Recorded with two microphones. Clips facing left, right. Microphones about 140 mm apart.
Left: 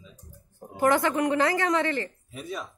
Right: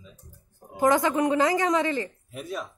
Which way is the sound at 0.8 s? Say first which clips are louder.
Right 1 dB; 15° right (ahead or behind).